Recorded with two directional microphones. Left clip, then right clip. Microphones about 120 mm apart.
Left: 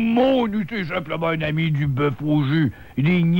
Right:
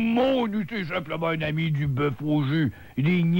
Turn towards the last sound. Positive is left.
turn(degrees=-30)  # may be behind; listen again after turning